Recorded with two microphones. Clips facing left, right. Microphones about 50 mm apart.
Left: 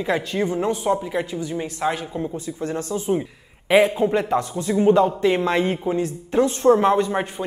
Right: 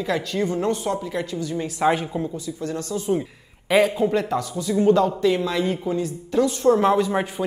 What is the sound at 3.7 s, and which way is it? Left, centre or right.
A woman's voice, centre.